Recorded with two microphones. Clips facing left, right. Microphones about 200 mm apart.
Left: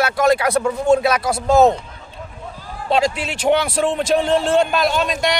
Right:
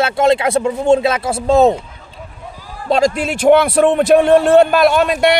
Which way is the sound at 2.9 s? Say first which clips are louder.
Right 4 dB; 45° right (ahead or behind).